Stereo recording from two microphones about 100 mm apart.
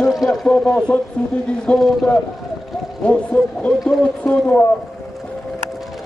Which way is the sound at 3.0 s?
10° left (ahead or behind).